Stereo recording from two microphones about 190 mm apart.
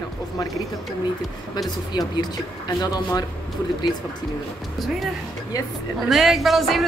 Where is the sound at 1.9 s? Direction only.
20° left (ahead or behind).